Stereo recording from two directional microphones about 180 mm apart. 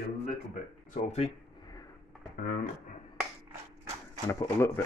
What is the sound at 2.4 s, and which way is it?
Speech, 50° left (ahead or behind).